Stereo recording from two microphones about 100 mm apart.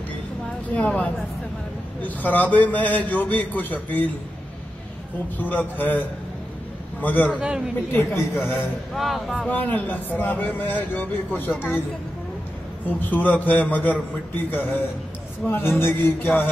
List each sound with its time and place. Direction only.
0.7 s a man's voice: 15° left (ahead or behind)
5.4 s a man's voice: 15° left (ahead or behind)
7.3 s a man's voice: 5° right (ahead or behind)
7.9 s speech: 20° left (ahead or behind)
8.9 s speech: centre (ahead or behind)
9.3 s speech: 15° left (ahead or behind)
12.8 s a man's voice: 15° left (ahead or behind)